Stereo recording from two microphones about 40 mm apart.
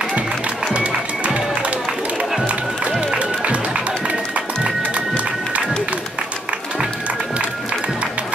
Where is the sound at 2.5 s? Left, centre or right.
Right.